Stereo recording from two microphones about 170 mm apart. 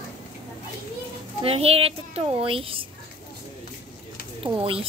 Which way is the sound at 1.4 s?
35° right (ahead or behind).